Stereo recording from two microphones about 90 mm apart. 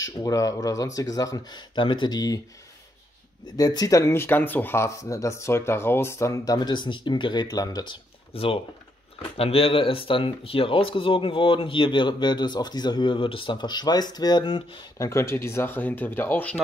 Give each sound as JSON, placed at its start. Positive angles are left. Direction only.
{"t": 0.0, "sound": "speech", "side_deg": 40}
{"t": 1.8, "sound": "speech", "side_deg": 60}
{"t": 3.5, "sound": "speech", "side_deg": 45}
{"t": 8.3, "sound": "speech", "side_deg": 90}
{"t": 14.4, "sound": "speech", "side_deg": 70}
{"t": 15.0, "sound": "speech", "side_deg": 35}